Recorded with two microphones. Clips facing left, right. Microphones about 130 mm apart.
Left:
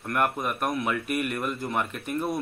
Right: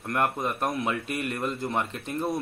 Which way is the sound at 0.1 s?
25° right (ahead or behind).